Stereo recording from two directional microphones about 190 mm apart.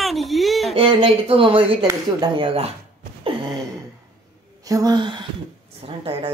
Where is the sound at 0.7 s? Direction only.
30° right (ahead or behind).